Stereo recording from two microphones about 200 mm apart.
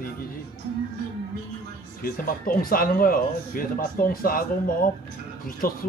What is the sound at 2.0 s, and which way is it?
Speech, 45° left (ahead or behind).